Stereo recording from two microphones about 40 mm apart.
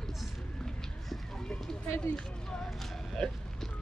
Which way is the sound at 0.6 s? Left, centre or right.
Centre.